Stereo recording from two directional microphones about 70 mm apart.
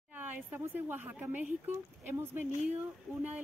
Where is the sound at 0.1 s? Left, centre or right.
Right.